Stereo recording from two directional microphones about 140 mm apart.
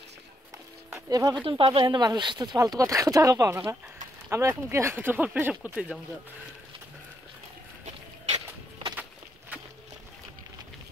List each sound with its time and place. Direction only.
1.1 s speech: 30° right (ahead or behind)
1.4 s speech: 40° right (ahead or behind); by 5.9 s 5° right (ahead or behind)